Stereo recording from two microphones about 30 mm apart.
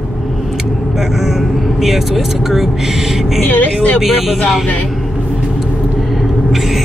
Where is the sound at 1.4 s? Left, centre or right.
Centre.